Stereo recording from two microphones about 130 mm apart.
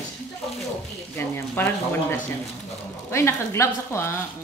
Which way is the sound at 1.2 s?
15° left (ahead or behind).